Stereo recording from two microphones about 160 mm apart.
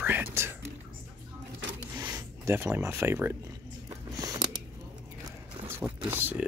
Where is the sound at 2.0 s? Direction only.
25° right (ahead or behind).